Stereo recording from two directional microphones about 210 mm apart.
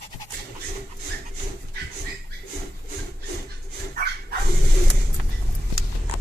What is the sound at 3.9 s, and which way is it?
Dog, 50° right (ahead or behind).